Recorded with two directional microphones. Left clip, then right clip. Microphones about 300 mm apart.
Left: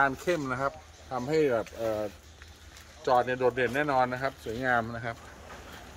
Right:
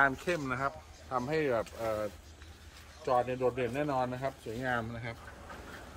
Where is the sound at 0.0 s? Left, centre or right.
Left.